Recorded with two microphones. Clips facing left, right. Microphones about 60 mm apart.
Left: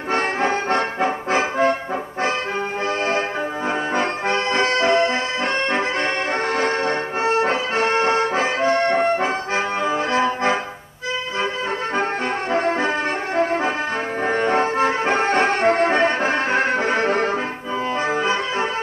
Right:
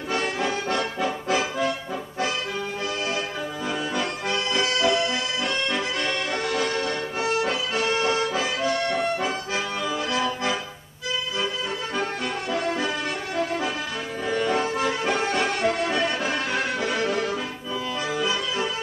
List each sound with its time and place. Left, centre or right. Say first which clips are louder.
0.1 s accordion: left 6 dB; left
3.9 s accordion: left 6 dB; left
6.5 s accordion: left 5 dB; left
9.8 s music: left 6 dB; left
12.0 s brass instrument: left 6 dB; left
14.2 s accordion: left 4 dB; left